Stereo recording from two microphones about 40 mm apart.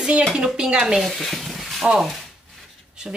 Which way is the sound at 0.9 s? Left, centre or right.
Centre.